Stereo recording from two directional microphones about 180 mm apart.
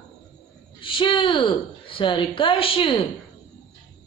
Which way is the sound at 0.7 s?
30° left (ahead or behind).